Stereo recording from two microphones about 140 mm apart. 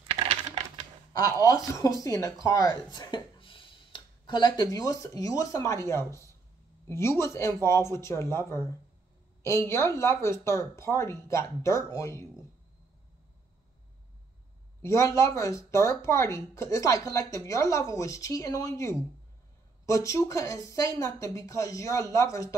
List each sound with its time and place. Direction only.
0.1 s coin: 55° right (ahead or behind)
1.4 s speech: 25° left (ahead or behind)
14.8 s speech: 20° left (ahead or behind)